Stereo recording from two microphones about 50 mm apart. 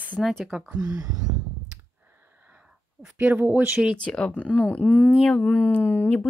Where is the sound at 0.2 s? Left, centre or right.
Centre.